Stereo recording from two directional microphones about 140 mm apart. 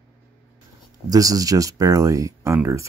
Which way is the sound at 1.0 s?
25° right (ahead or behind).